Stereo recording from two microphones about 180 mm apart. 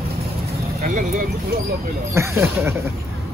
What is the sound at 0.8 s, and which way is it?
Speech, 50° right (ahead or behind).